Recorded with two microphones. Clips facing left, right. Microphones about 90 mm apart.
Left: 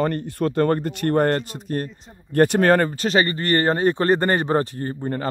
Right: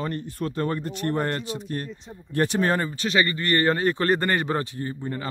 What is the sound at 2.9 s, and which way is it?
Speech, 40° left (ahead or behind).